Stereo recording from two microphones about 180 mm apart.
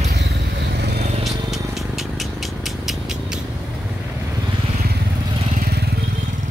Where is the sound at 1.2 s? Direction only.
Centre (ahead or behind).